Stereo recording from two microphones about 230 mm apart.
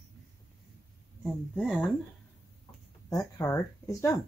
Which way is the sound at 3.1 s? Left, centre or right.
Centre.